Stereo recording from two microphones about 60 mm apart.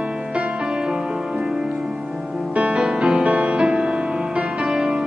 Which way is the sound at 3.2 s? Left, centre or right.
Centre.